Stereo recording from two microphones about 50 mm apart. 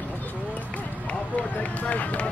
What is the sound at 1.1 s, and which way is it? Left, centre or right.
Run, left.